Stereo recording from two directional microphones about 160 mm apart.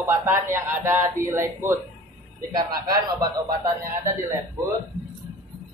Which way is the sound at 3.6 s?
20° right (ahead or behind).